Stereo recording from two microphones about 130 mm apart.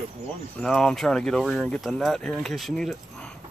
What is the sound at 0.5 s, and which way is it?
Speech, 5° left (ahead or behind).